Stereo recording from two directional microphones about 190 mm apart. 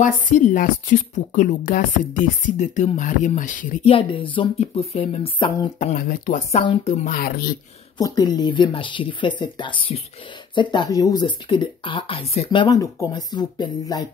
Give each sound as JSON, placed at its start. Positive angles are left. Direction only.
{"t": 0.0, "sound": "a woman's voice", "side_deg": 40}
{"t": 3.9, "sound": "speech", "side_deg": 25}
{"t": 5.8, "sound": "a woman's voice", "side_deg": 45}
{"t": 6.6, "sound": "speech", "side_deg": 25}
{"t": 6.9, "sound": "a woman's voice", "side_deg": 50}
{"t": 8.0, "sound": "speech", "side_deg": 20}